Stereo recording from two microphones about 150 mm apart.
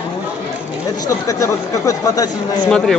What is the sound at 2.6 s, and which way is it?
Speech, 5° left (ahead or behind).